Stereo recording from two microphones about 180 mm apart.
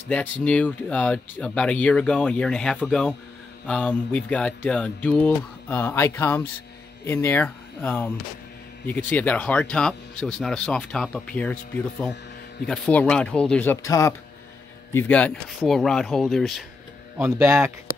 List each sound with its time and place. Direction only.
0.1 s speech: 5° left (ahead or behind)
3.6 s a sound: 5° left (ahead or behind)
7.1 s speech: 10° left (ahead or behind)
12.6 s speech: 5° left (ahead or behind)